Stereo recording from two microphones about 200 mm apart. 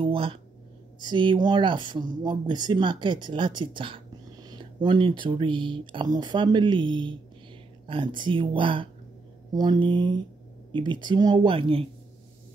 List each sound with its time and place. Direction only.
0.0 s speech: 25° right (ahead or behind)